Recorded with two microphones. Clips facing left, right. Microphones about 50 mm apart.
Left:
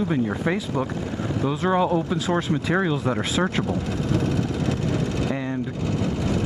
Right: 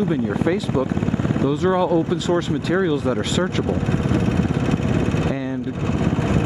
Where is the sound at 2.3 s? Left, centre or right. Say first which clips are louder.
Right 3 dB; left.